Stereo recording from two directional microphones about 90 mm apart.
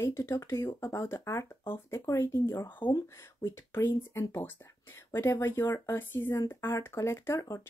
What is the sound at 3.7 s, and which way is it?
Speech, 25° left (ahead or behind).